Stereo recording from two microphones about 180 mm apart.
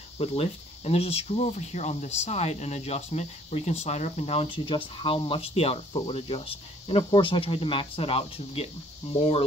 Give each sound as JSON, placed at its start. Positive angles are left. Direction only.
{"t": 0.2, "sound": "speech", "side_deg": 35}